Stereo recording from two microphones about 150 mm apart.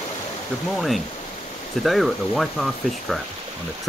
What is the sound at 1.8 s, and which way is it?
Speech, centre (ahead or behind).